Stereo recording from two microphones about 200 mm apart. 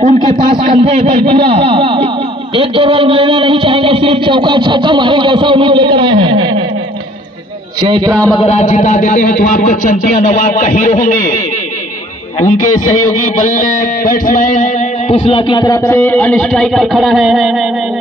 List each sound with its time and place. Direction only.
0.0 s speech: 35° right (ahead or behind)
7.9 s speech: 20° right (ahead or behind)
8.4 s speech: 35° left (ahead or behind)
13.4 s music: 40° left (ahead or behind); by 17.6 s centre (ahead or behind)